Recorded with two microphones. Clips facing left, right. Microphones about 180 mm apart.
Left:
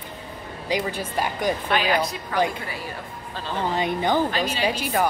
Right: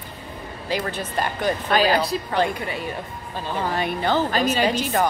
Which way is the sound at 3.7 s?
20° left (ahead or behind).